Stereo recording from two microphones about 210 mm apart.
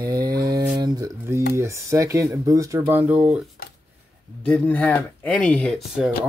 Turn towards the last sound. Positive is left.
turn(degrees=0)  # may be behind; listen again after turning